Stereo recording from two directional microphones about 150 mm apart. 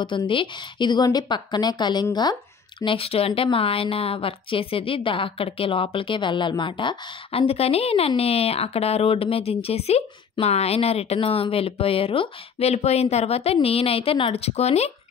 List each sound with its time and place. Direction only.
0.0 s a woman's voice: 35° left (ahead or behind)